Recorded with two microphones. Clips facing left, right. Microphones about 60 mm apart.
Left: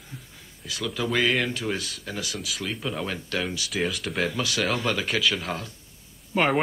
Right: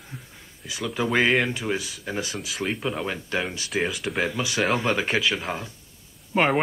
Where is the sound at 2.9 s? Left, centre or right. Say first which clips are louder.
Right 2 dB; centre.